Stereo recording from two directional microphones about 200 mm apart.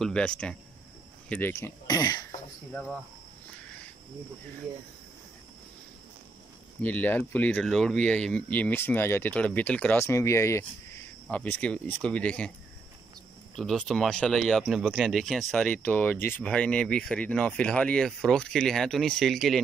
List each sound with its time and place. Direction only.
0.0 s speech: 5° left (ahead or behind)
2.7 s speech: centre (ahead or behind)
6.8 s speech: 10° left (ahead or behind)
13.6 s speech: centre (ahead or behind)